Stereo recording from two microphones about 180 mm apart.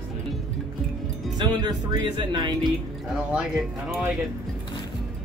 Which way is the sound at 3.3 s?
5° right (ahead or behind).